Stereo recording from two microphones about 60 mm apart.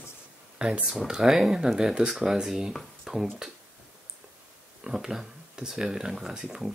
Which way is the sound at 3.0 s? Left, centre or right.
Centre.